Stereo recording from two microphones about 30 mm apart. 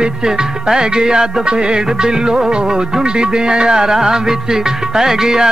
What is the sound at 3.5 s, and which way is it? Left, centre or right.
Music, right.